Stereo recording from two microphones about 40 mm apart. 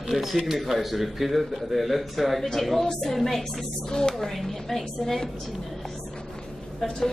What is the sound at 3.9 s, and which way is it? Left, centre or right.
Speech, centre.